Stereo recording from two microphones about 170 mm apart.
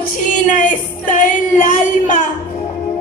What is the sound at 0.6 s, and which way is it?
Music, 50° left (ahead or behind).